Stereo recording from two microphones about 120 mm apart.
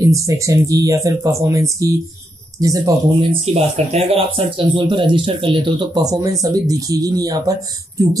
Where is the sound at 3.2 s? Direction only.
55° right (ahead or behind).